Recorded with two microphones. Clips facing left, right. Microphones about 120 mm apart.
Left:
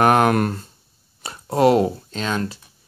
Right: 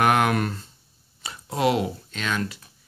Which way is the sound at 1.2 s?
40° left (ahead or behind).